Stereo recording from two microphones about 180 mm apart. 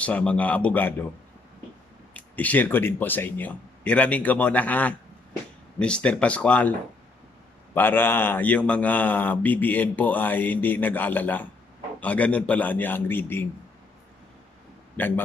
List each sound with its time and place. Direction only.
0.0 s speech: 5° left (ahead or behind)
2.1 s speech: 10° left (ahead or behind)
7.7 s speech: 10° left (ahead or behind)
15.0 s speech: 10° left (ahead or behind)